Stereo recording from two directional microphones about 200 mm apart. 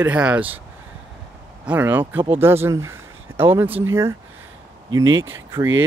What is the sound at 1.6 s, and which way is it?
Speech, 10° right (ahead or behind).